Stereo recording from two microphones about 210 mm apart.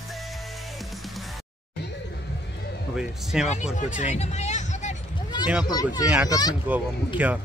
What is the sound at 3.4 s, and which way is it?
Speech, 30° left (ahead or behind).